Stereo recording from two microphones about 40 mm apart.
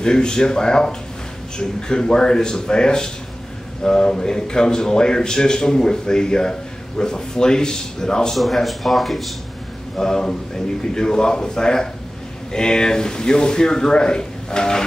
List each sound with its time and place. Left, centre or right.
0.0 s a man's voice: centre
8.4 s speech: centre
9.9 s a man's voice: centre